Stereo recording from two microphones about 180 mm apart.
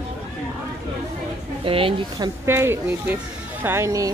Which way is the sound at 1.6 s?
30° right (ahead or behind).